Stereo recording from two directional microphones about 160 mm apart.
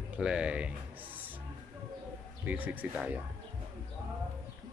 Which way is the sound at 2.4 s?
10° right (ahead or behind).